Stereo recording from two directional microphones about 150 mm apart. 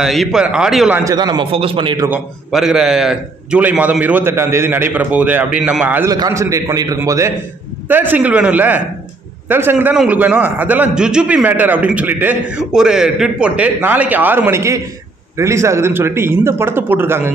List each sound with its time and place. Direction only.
0.0 s a man's voice: centre (ahead or behind)
0.9 s a man's voice: 25° right (ahead or behind)
2.5 s a man's voice: centre (ahead or behind)
6.0 s a man's voice: 20° right (ahead or behind)